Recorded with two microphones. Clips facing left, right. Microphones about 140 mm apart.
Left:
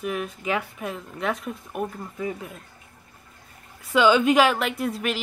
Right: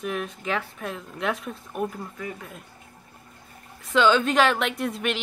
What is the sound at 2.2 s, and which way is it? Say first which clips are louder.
Speech: left 10 dB; 20° left (ahead or behind).